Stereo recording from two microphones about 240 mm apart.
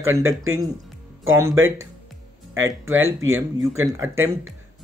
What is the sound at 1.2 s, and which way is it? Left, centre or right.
Speech, centre.